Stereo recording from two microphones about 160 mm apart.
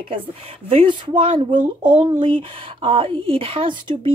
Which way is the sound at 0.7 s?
35° right (ahead or behind).